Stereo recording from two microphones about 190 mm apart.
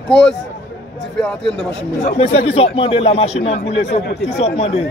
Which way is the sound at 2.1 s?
30° left (ahead or behind).